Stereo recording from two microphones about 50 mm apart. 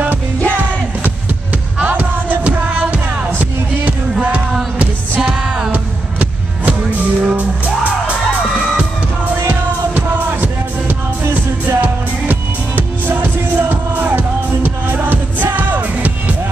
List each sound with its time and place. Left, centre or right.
1.9 s music: right
2.4 s music: right
5.7 s music: right
9.9 s music: right